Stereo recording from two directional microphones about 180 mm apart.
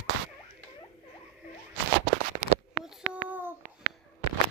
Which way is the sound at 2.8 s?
5° right (ahead or behind).